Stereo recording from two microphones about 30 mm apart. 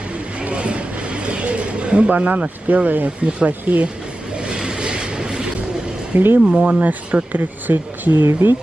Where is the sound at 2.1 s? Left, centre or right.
Right.